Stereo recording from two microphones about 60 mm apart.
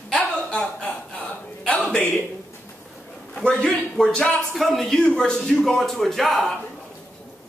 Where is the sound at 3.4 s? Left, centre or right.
Centre.